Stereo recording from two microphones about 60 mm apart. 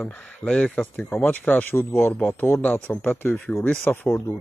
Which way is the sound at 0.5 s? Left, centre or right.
Centre.